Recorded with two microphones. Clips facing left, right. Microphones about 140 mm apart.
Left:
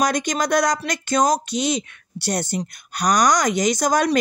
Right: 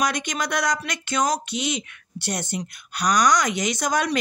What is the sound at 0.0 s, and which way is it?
Speech, 40° left (ahead or behind).